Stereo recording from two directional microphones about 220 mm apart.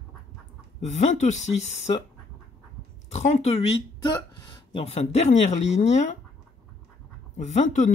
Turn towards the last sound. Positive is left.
turn(degrees=30)  # may be behind; listen again after turning